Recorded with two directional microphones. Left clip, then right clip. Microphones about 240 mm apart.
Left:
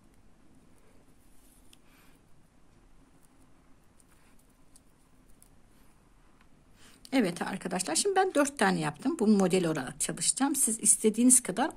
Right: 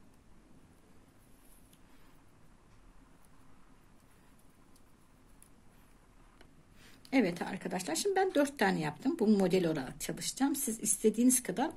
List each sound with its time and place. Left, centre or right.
6.8 s speech: centre